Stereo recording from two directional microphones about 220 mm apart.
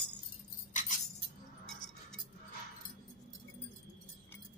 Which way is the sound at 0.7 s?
35° left (ahead or behind).